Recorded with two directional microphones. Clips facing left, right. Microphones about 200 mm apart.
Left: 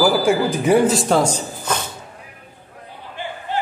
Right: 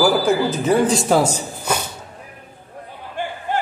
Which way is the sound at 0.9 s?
5° right (ahead or behind).